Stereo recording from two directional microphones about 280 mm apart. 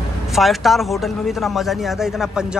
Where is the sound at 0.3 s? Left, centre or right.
Centre.